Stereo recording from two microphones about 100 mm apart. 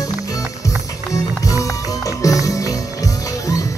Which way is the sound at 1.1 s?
35° left (ahead or behind).